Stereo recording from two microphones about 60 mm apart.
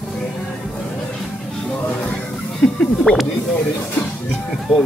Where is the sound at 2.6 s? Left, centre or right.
Centre.